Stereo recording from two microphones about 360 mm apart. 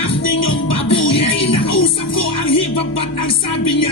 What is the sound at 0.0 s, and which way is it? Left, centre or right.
Music, left.